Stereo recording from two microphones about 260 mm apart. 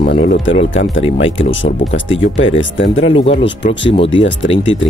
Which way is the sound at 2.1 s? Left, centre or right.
Left.